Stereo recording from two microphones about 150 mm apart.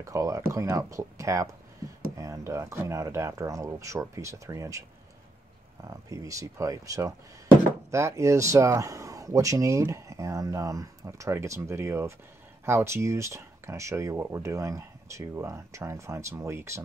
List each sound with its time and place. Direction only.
0.0 s speech: 20° right (ahead or behind)
5.9 s speech: 20° right (ahead or behind)